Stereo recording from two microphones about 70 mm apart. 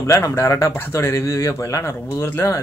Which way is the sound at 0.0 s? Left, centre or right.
Left.